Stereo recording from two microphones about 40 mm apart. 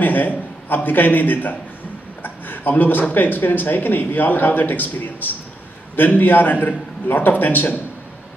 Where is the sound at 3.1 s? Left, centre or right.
Left.